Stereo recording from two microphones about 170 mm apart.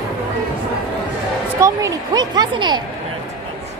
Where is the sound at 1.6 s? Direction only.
20° right (ahead or behind).